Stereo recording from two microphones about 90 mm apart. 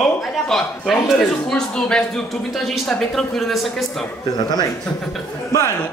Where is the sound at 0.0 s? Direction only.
Centre (ahead or behind).